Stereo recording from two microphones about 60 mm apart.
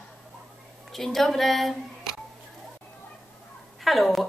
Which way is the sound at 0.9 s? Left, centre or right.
Centre.